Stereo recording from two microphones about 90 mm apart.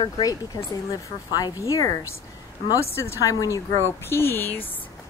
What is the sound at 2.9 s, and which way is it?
A woman's voice, 30° left (ahead or behind).